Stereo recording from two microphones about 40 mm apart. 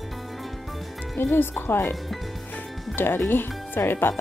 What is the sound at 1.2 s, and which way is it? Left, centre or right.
Speech, left.